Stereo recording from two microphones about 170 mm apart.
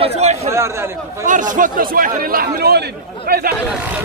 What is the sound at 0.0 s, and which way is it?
Chatter, 40° right (ahead or behind).